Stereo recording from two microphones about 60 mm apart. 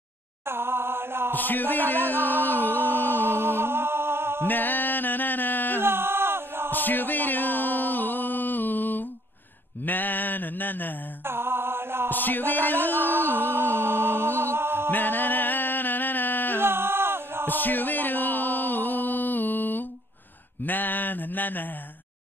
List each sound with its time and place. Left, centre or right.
0.5 s chant: right
1.3 s mantra: left
2.1 s music: right
4.5 s music: left
5.8 s a sound: right
6.7 s music: left
9.8 s mantra: left
11.2 s chant: right
12.1 s music: left
12.9 s music: right
14.9 s music: left
16.6 s a sound: right
17.5 s music: left
20.6 s mantra: left